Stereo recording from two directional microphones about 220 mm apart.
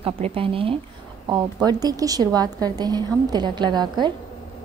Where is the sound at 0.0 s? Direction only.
25° right (ahead or behind).